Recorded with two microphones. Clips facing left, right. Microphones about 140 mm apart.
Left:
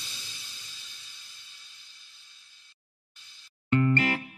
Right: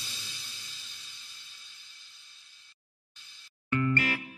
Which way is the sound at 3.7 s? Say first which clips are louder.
Left 4 dB; 30° left (ahead or behind).